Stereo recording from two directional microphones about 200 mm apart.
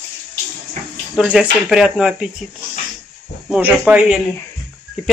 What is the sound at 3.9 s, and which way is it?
Speech, 5° right (ahead or behind).